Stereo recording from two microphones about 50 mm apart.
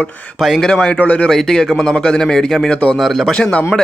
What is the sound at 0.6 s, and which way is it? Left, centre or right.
Speech, centre.